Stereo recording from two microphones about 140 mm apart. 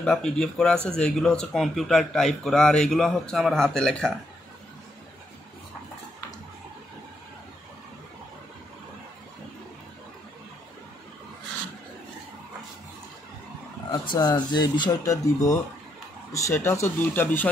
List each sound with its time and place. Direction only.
0.0 s a man's voice: 5° left (ahead or behind)
13.9 s speech: 30° left (ahead or behind); by 17.5 s 15° left (ahead or behind)